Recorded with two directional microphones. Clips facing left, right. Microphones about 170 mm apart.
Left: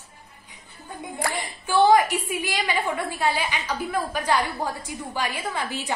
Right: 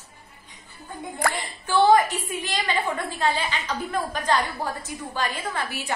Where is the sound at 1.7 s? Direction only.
15° left (ahead or behind).